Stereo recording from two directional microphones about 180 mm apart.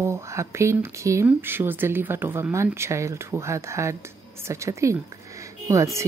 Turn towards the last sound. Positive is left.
turn(degrees=-15)  # may be behind; listen again after turning